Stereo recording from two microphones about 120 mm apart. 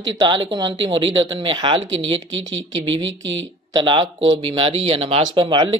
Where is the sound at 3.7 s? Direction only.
45° right (ahead or behind).